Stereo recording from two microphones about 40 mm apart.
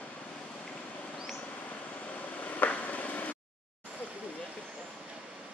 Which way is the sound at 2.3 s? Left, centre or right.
Left.